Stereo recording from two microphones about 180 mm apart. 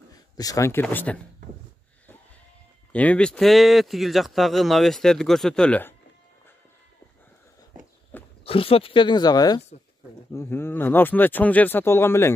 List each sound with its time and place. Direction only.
0.4 s speech: 20° left (ahead or behind)
2.9 s a man's voice: 5° left (ahead or behind)
8.1 s walk: 10° left (ahead or behind)
8.5 s speech: 30° left (ahead or behind); by 12.4 s 15° left (ahead or behind)